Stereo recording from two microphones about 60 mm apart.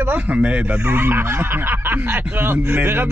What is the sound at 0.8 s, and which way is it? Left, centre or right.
Speech, right.